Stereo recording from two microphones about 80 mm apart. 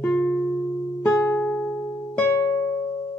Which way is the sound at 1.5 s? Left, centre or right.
Centre.